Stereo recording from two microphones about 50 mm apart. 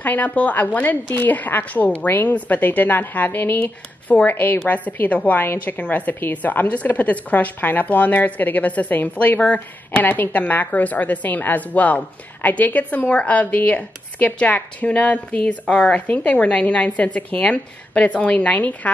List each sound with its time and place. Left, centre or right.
0.0 s a woman's voice: left
9.4 s a woman's voice: left
10.0 s a woman's voice: left